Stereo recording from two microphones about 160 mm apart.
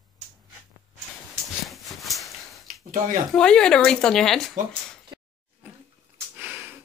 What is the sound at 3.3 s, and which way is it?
Speech, 5° left (ahead or behind).